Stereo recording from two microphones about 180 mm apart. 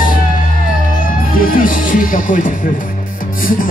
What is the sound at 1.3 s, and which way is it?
Speech, 50° left (ahead or behind).